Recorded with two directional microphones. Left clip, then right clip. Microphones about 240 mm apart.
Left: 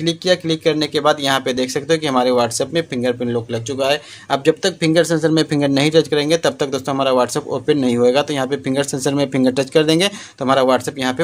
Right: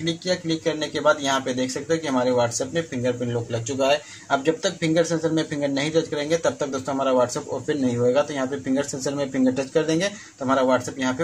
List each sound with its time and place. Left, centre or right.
0.0 s speech: left